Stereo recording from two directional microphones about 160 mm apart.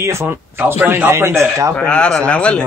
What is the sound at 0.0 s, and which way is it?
Speech, 15° right (ahead or behind).